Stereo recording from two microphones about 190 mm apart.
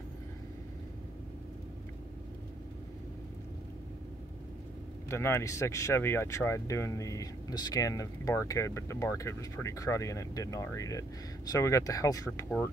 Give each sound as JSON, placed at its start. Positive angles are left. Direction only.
{"t": 5.1, "sound": "speech", "side_deg": 15}